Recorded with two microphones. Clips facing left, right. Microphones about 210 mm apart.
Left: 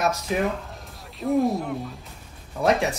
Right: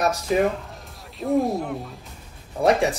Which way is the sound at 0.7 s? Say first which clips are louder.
Even; centre (ahead or behind).